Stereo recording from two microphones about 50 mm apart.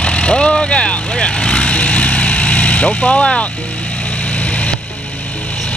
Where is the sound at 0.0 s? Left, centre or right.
Left.